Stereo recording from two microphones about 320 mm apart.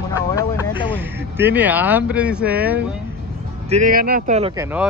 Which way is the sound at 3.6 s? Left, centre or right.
Right.